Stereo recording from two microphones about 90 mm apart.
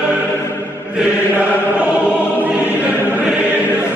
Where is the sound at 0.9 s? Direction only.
15° right (ahead or behind).